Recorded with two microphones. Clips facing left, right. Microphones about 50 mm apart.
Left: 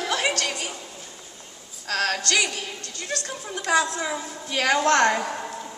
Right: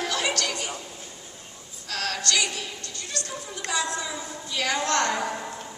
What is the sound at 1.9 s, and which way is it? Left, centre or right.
Music, left.